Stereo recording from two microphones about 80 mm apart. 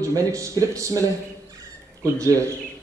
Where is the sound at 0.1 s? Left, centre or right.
Right.